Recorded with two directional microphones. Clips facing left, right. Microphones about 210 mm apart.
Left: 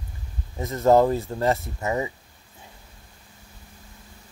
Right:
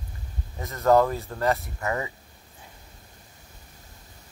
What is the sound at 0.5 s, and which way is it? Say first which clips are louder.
Speech: left 2 dB; 20° left (ahead or behind).